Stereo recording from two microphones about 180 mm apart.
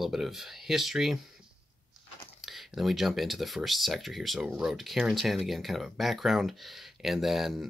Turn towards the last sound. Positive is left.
turn(degrees=0)  # may be behind; listen again after turning